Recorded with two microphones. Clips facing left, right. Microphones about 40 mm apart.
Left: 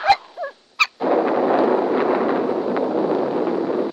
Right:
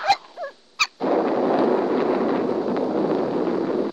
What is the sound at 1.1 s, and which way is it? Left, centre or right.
Gunshot, centre.